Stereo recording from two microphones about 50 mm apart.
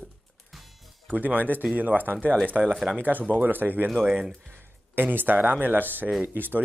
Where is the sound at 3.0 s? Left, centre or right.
Right.